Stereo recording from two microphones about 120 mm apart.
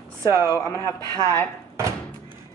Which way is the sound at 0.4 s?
25° left (ahead or behind).